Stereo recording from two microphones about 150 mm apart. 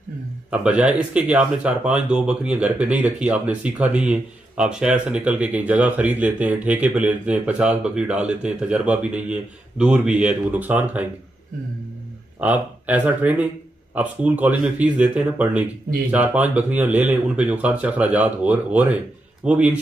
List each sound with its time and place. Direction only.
0.5 s speech: 10° right (ahead or behind)
12.4 s speech: 10° right (ahead or behind)